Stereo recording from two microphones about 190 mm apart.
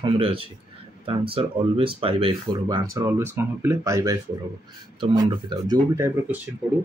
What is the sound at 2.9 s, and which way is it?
Speech, 15° right (ahead or behind).